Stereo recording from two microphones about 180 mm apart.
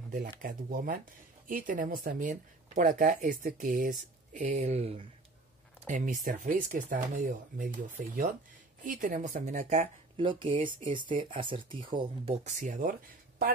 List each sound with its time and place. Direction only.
0.1 s speech: 50° right (ahead or behind); by 12.4 s 25° right (ahead or behind)
12.4 s speech: 45° right (ahead or behind)